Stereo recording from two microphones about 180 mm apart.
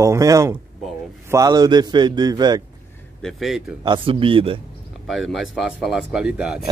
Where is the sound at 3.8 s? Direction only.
25° right (ahead or behind).